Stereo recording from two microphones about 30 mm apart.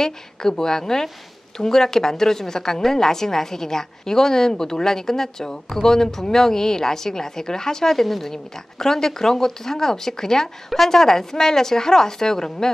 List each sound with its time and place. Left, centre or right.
0.0 s a woman's voice: centre